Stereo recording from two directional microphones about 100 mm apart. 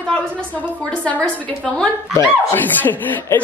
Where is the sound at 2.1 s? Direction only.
20° left (ahead or behind).